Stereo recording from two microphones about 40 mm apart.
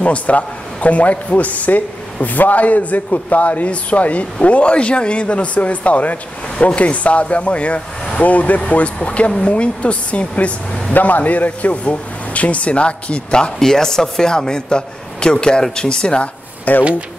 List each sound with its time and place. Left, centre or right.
0.0 s speech: left
10.9 s speech: left
13.6 s speech: centre
16.7 s speech: left